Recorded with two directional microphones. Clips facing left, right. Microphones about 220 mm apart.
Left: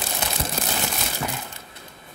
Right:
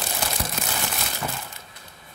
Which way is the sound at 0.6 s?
35° left (ahead or behind).